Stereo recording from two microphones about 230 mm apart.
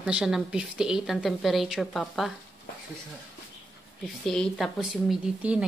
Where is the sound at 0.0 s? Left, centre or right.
Centre.